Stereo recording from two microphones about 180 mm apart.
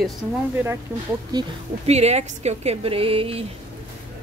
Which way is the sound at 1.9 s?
35° right (ahead or behind).